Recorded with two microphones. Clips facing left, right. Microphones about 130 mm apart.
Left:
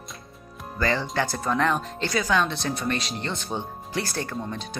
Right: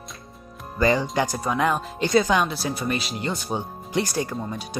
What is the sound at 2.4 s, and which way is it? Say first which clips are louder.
Speech: right 1 dB; 5° right (ahead or behind).